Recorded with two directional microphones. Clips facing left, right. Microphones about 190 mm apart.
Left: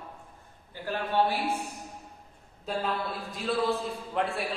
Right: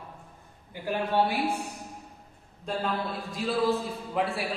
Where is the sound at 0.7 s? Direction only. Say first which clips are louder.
Right 2 dB; 15° right (ahead or behind).